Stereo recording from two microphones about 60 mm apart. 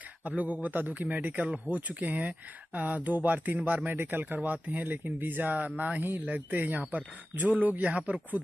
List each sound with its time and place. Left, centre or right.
0.2 s speech: right
4.3 s speech: right